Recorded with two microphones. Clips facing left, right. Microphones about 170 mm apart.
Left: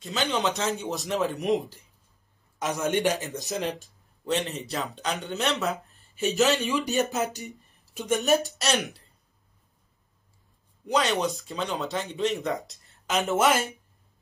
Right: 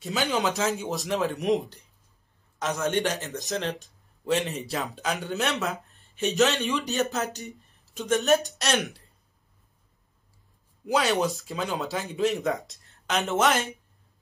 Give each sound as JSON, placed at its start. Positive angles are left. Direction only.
{"t": 0.0, "sound": "speech", "side_deg": 0}
{"t": 2.6, "sound": "a man's voice", "side_deg": 10}
{"t": 3.8, "sound": "speech", "side_deg": 0}
{"t": 6.7, "sound": "a man's voice", "side_deg": 15}
{"t": 8.5, "sound": "speech", "side_deg": 0}
{"t": 10.9, "sound": "speech", "side_deg": -5}